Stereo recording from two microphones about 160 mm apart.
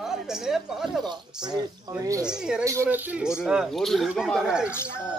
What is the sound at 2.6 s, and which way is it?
A man's voice, 15° right (ahead or behind).